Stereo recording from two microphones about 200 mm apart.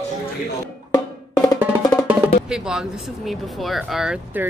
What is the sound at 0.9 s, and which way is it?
Music, 20° left (ahead or behind).